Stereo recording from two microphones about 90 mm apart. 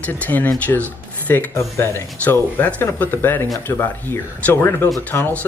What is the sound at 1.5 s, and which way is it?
Speech, 30° left (ahead or behind).